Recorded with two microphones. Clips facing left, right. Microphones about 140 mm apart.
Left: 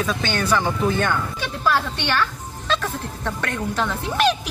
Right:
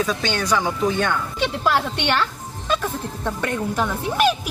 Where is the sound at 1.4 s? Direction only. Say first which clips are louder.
Right 4 dB; 20° right (ahead or behind).